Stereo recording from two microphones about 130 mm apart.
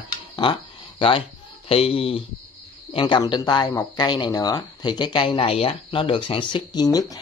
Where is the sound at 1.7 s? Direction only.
45° left (ahead or behind).